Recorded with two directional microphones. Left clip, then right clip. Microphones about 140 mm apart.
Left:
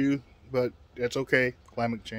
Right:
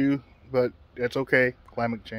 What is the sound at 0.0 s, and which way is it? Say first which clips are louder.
Speech: right 2 dB; 15° left (ahead or behind).